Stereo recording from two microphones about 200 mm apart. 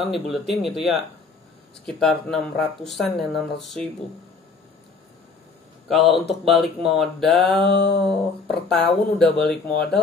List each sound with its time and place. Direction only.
0.0 s speech: centre (ahead or behind)
5.9 s speech: centre (ahead or behind)
7.7 s a sound: 55° left (ahead or behind)
8.1 s speech: 5° left (ahead or behind)